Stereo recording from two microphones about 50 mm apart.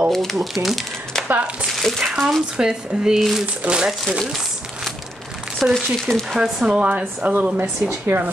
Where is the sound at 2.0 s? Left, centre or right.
Centre.